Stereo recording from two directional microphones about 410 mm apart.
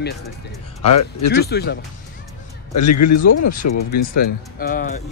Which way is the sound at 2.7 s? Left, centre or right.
Left.